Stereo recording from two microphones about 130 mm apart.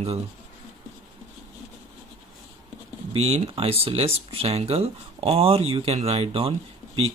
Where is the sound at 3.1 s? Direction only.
50° right (ahead or behind).